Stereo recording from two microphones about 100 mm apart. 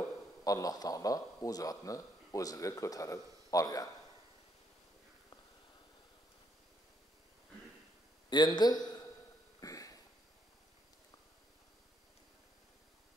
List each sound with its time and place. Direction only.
0.4 s a man's voice: 35° left (ahead or behind)
8.3 s a man's voice: 45° left (ahead or behind)
9.6 s a sound: 35° left (ahead or behind)